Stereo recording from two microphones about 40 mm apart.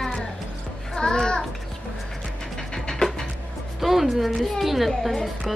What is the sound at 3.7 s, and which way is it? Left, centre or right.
A woman's voice, centre.